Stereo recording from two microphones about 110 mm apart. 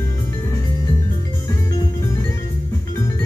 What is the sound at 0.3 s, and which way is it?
Music, 25° left (ahead or behind).